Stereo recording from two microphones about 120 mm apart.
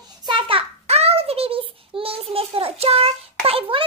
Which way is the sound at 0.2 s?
40° right (ahead or behind).